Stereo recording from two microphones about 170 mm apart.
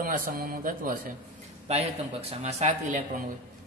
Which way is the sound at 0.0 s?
55° right (ahead or behind).